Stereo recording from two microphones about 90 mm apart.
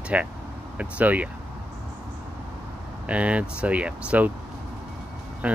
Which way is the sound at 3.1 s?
15° right (ahead or behind).